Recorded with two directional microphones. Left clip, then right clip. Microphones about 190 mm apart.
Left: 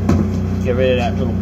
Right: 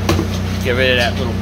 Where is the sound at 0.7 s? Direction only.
25° right (ahead or behind).